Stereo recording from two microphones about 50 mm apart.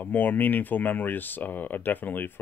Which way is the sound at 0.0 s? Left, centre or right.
Left.